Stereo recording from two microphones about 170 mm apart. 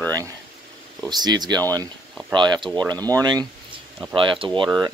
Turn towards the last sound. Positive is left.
turn(degrees=-30)  # may be behind; listen again after turning